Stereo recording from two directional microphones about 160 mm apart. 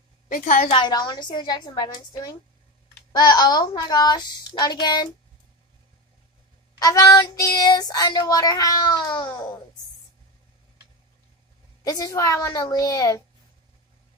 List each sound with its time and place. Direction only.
0.3 s a woman's voice: 45° left (ahead or behind)
0.7 s child singing: 30° left (ahead or behind)
3.1 s child singing: 25° left (ahead or behind)
6.8 s child singing: 20° left (ahead or behind)
11.8 s child singing: 20° left (ahead or behind)